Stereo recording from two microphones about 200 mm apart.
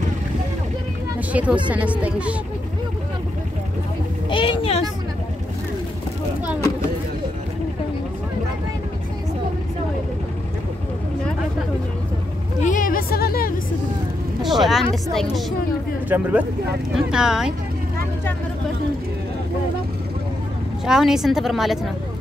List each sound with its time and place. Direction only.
1.3 s speech: 5° right (ahead or behind)
4.3 s vehicle: 25° left (ahead or behind)
12.6 s a sound: 40° left (ahead or behind)
14.4 s speech: centre (ahead or behind)
20.8 s speech: 5° right (ahead or behind)